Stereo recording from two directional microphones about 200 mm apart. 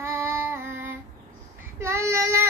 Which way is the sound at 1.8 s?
15° right (ahead or behind).